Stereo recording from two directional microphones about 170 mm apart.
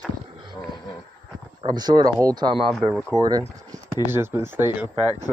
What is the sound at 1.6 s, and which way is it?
Speech, 25° right (ahead or behind).